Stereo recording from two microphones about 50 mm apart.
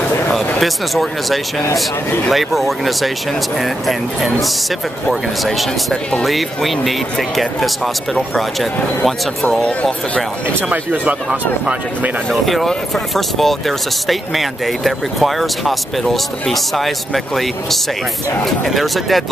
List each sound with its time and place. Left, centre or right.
0.6 s speech: centre
5.4 s speech: centre
9.6 s speech: left
10.7 s speech: right
12.3 s speech: centre